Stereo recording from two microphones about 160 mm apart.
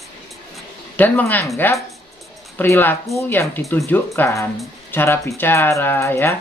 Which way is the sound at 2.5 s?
15° left (ahead or behind).